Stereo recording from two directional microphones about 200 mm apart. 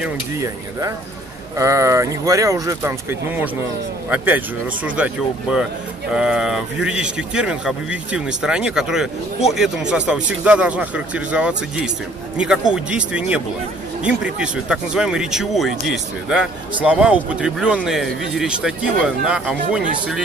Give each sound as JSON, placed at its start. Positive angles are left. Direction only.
{"t": 0.4, "sound": "speech", "side_deg": -15}
{"t": 4.8, "sound": "speech", "side_deg": -5}